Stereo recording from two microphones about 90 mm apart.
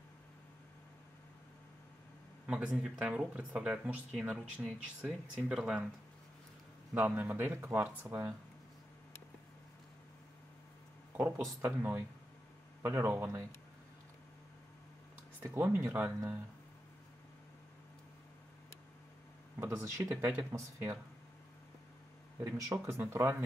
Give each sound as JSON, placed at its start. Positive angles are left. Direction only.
{"t": 2.4, "sound": "speech", "side_deg": -10}
{"t": 6.9, "sound": "speech", "side_deg": -15}
{"t": 11.1, "sound": "speech", "side_deg": -25}
{"t": 15.4, "sound": "speech", "side_deg": -25}
{"t": 19.6, "sound": "speech", "side_deg": -35}
{"t": 22.4, "sound": "speech", "side_deg": -35}